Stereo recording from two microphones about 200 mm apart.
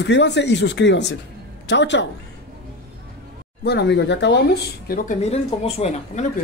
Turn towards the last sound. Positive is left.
turn(degrees=30)  # may be behind; listen again after turning